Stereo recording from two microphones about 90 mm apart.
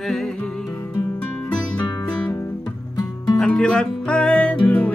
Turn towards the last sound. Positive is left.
turn(degrees=20)  # may be behind; listen again after turning